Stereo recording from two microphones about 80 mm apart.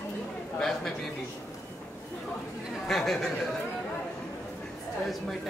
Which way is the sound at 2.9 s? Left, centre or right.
Centre.